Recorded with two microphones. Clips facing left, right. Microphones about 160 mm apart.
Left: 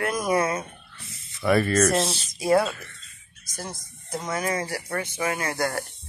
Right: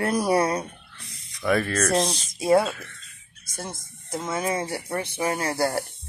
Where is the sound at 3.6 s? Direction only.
25° right (ahead or behind).